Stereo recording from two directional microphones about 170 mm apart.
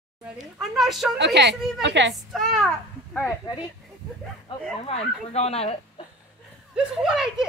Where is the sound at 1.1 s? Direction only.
90° right.